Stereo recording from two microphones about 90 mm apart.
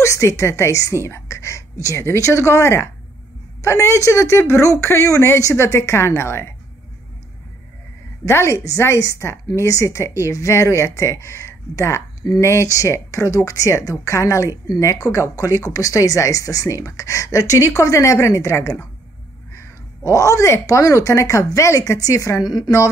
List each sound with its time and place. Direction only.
0.0 s a woman's voice: 35° left (ahead or behind)
8.3 s a woman's voice: 30° left (ahead or behind)